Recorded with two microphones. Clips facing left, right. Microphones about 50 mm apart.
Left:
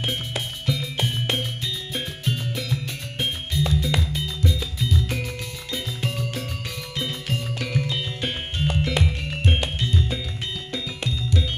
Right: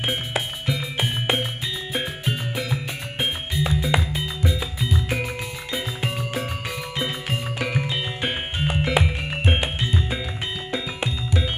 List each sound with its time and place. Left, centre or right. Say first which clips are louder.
0.0 s music: right 3 dB; centre